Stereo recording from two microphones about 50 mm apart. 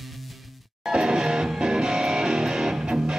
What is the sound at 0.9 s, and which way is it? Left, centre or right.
Music, centre.